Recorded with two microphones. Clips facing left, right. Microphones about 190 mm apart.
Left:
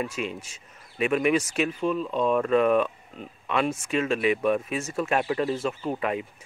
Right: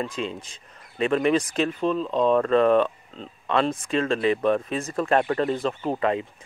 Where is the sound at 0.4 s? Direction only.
10° left (ahead or behind).